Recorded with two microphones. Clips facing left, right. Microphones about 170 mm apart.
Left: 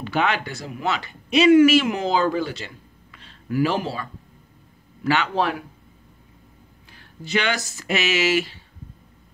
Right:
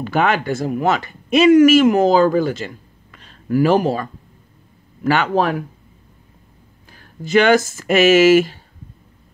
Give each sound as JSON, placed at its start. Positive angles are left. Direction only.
{"t": 0.0, "sound": "speech", "side_deg": -45}
{"t": 6.9, "sound": "speech", "side_deg": -45}